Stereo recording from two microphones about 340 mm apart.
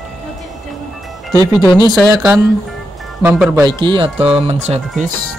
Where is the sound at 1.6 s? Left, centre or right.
Centre.